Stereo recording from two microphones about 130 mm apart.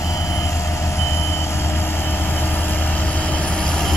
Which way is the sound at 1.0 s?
20° left (ahead or behind).